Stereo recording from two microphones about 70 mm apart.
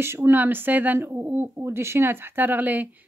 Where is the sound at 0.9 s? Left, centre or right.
Right.